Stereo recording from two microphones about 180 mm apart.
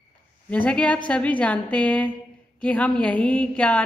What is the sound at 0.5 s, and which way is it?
A woman's voice, 5° left (ahead or behind).